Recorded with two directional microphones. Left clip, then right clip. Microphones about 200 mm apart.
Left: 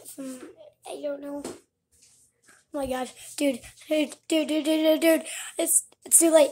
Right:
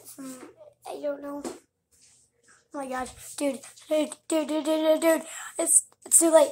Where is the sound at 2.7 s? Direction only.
25° left (ahead or behind).